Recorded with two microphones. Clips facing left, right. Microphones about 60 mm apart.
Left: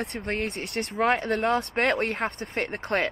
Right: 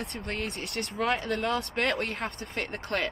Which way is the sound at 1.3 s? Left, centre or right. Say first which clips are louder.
Left 4 dB; left.